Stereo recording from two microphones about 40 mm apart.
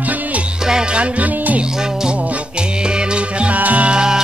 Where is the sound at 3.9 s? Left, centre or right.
Centre.